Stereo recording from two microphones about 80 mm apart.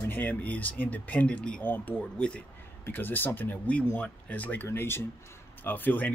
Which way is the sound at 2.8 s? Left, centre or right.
Left.